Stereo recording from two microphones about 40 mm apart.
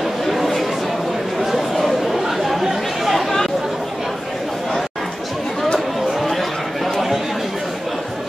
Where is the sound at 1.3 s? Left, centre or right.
Centre.